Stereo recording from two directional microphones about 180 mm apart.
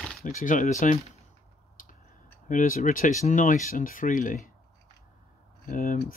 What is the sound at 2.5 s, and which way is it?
Speech, 45° left (ahead or behind).